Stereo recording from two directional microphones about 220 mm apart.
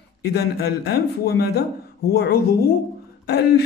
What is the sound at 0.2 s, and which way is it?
A man's voice, 45° left (ahead or behind).